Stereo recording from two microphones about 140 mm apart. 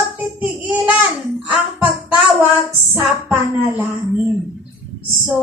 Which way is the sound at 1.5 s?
15° right (ahead or behind).